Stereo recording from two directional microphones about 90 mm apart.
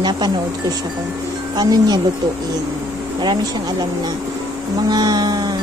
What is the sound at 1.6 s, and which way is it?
Music, 50° right (ahead or behind).